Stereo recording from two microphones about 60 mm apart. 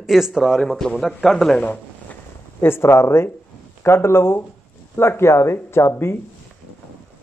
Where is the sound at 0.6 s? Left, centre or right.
Centre.